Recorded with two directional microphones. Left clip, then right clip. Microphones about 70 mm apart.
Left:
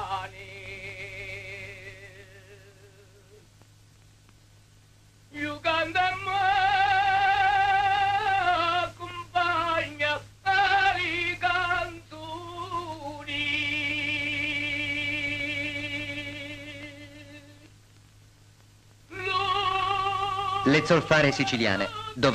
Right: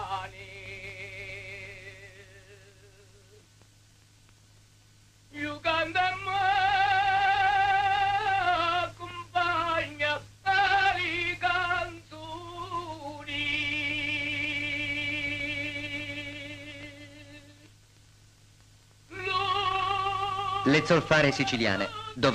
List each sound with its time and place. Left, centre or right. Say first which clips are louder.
0.0 s music: left 2 dB; left
5.3 s music: left 2 dB; left
19.0 s music: left 2 dB; left